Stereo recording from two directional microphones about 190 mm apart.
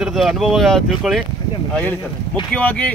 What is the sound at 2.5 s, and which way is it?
Speech, 5° left (ahead or behind).